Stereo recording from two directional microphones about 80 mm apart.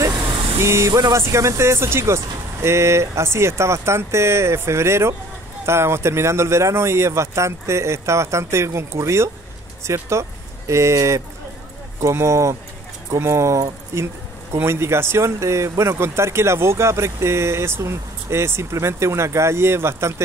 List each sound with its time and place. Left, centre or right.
0.6 s speech: right